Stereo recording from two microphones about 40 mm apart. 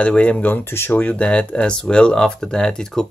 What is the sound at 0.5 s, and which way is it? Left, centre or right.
Speech, left.